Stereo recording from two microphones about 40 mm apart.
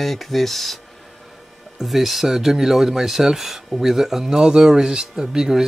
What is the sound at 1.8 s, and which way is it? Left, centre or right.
Speech, centre.